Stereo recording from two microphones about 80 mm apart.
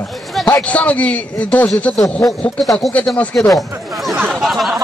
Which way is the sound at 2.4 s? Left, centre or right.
Centre.